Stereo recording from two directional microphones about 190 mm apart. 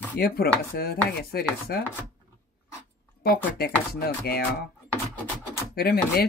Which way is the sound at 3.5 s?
55° left (ahead or behind).